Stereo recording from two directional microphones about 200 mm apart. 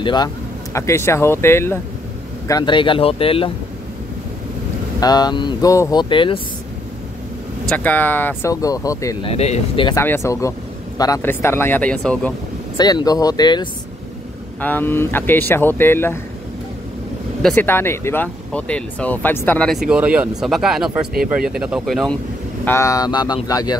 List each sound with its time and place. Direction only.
0.0 s speech: 20° left (ahead or behind)
5.0 s speech: 20° left (ahead or behind)
7.7 s speech: 10° left (ahead or behind)
9.3 s speech: 30° left (ahead or behind)
9.9 s speech: 10° left (ahead or behind)
12.7 s speech: 20° left (ahead or behind)
14.6 s speech: 10° left (ahead or behind)
17.4 s speech: 5° left (ahead or behind)
22.7 s speech: 15° left (ahead or behind)